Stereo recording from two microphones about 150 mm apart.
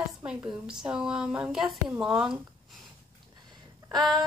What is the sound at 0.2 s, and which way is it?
Speech, 5° right (ahead or behind).